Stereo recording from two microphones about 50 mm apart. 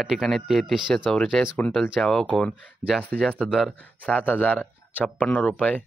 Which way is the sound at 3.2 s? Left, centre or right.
Centre.